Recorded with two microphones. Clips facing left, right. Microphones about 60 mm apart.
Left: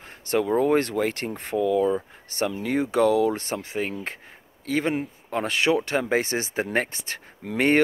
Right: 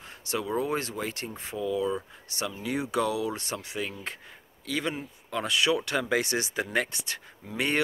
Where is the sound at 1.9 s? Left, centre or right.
Left.